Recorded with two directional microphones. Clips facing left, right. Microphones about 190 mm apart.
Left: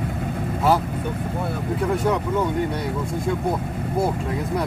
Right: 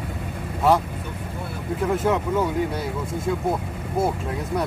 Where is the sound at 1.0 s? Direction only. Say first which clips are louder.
Left 6 dB; 50° left (ahead or behind).